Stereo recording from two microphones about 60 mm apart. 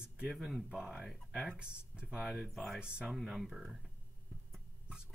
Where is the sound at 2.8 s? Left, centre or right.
Centre.